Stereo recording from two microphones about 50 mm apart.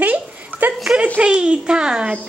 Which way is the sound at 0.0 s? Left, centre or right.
Right.